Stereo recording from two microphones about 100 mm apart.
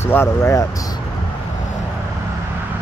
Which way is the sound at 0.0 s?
25° left (ahead or behind).